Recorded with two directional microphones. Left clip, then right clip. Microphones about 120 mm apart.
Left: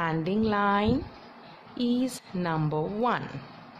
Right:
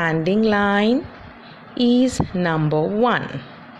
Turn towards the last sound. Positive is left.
turn(degrees=-25)  # may be behind; listen again after turning